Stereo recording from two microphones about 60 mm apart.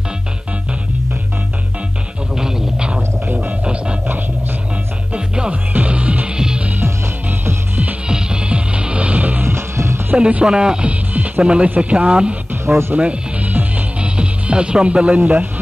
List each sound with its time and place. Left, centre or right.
2.3 s a sound: centre
3.3 s music: centre
5.1 s music: centre
6.8 s music: right
8.1 s music: centre
9.5 s music: right
10.1 s a man's voice: centre
12.6 s speech: right
12.9 s music: right